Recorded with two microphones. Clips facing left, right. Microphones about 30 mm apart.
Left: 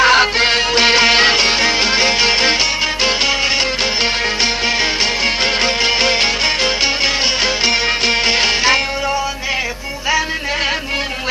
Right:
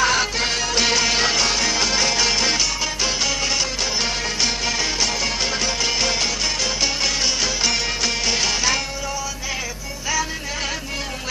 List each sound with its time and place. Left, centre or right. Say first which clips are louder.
0.0 s music: left 8 dB; left